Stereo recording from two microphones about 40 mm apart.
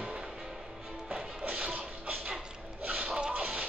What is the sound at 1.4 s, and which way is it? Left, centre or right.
Shuffle, right.